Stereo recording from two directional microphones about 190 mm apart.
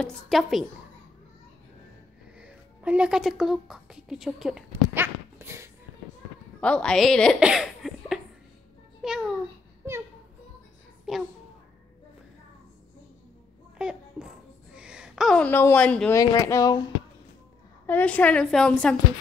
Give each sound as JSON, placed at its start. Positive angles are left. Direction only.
{"t": 0.0, "sound": "a woman's voice", "side_deg": 0}
{"t": 2.3, "sound": "speech", "side_deg": -5}
{"t": 4.9, "sound": "dog", "side_deg": -10}
{"t": 6.6, "sound": "a child's voice", "side_deg": 5}
{"t": 11.1, "sound": "a child's voice", "side_deg": 0}
{"t": 13.7, "sound": "a sound", "side_deg": -5}
{"t": 16.2, "sound": "a woman's voice", "side_deg": 15}
{"t": 17.8, "sound": "a woman's voice", "side_deg": 10}